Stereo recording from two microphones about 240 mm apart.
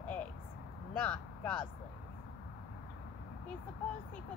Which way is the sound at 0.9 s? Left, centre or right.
Centre.